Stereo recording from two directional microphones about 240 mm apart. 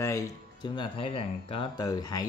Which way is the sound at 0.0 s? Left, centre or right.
Centre.